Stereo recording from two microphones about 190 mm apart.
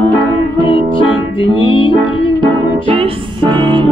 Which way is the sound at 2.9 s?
25° right (ahead or behind).